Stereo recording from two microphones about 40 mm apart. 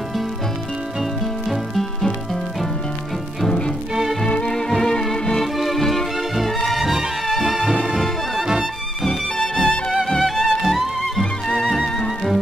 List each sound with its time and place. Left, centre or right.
1.8 s music: centre
3.4 s music: centre
3.9 s music: centre
4.3 s music: centre
5.6 s music: centre
9.0 s music: centre
11.4 s music: centre